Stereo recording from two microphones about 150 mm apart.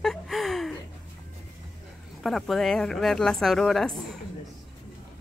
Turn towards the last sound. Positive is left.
turn(degrees=0)  # may be behind; listen again after turning